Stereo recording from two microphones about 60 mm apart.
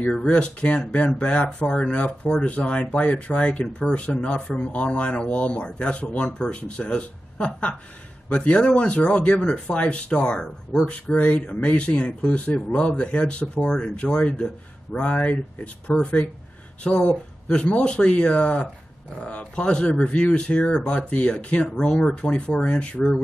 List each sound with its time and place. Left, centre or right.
0.1 s speech: centre